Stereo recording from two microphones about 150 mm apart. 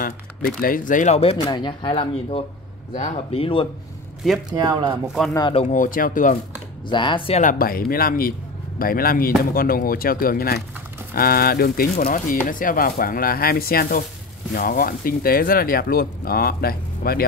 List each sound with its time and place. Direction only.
0.6 s speech: 70° left (ahead or behind); by 1.3 s 45° left (ahead or behind)
1.5 s speech: 30° left (ahead or behind)
4.5 s speech: 25° right (ahead or behind)
5.0 s speech: 5° right (ahead or behind)
5.5 s speech: 45° left (ahead or behind)
5.8 s speech: 70° left (ahead or behind)
6.9 s speech: 30° left (ahead or behind)
7.3 s speech: 65° left (ahead or behind); by 17.3 s 85° left